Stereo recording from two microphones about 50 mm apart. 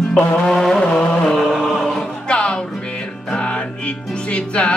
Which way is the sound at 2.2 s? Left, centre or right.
Left.